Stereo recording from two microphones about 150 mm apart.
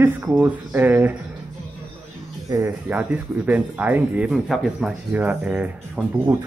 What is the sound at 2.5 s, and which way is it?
Speech, 15° right (ahead or behind).